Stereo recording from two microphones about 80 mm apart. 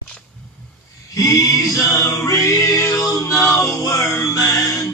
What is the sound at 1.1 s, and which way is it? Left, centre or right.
A capella, left.